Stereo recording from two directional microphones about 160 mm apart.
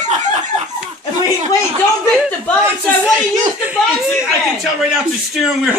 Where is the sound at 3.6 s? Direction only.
10° right (ahead or behind).